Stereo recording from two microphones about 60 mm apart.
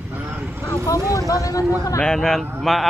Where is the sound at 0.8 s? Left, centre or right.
Left.